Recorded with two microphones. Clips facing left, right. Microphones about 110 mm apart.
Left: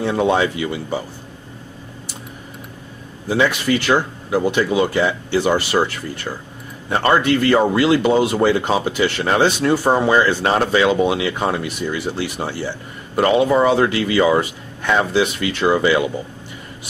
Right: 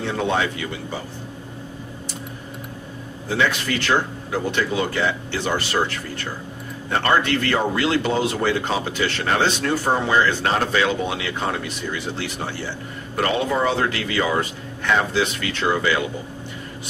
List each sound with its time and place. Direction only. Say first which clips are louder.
0.0 s speech: left 5 dB; 15° left (ahead or behind)
3.3 s speech: left 5 dB; 15° left (ahead or behind)
13.1 s speech: left 7 dB; 20° left (ahead or behind)